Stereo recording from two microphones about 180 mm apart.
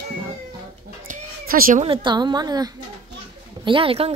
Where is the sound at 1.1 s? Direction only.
50° right (ahead or behind).